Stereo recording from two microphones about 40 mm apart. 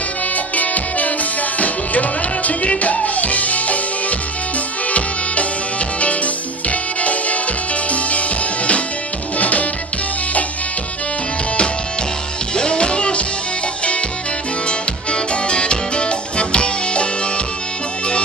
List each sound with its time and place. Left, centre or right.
0.6 s music: left
4.9 s music: left
12.5 s music: left
14.7 s music: left